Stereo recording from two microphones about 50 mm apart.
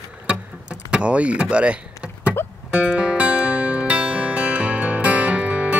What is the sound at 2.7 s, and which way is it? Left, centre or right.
Music, right.